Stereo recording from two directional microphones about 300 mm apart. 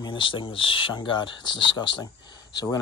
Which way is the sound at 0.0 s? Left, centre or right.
Centre.